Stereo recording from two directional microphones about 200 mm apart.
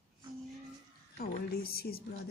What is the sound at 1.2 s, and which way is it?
Speech, 50° left (ahead or behind).